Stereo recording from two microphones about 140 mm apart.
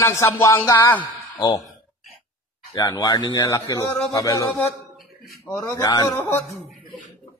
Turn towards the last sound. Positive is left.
turn(degrees=25)  # may be behind; listen again after turning